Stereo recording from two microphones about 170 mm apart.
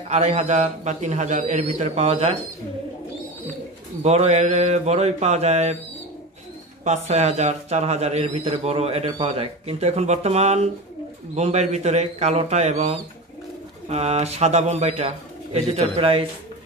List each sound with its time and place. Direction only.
0.1 s a man's voice: 40° right (ahead or behind)
4.0 s a man's voice: 40° right (ahead or behind)
6.8 s a man's voice: 40° right (ahead or behind)